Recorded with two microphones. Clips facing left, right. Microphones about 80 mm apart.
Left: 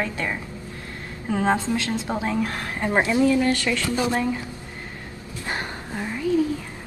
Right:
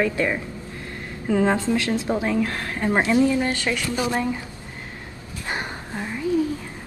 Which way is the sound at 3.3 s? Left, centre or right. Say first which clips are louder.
Left 2 dB; right.